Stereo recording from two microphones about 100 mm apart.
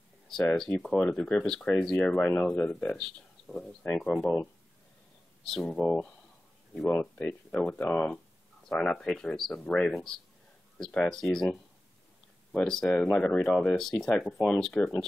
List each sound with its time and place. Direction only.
0.3 s speech: 5° left (ahead or behind)
6.9 s speech: 20° left (ahead or behind)
7.2 s speech: 5° left (ahead or behind)
12.5 s speech: 5° left (ahead or behind)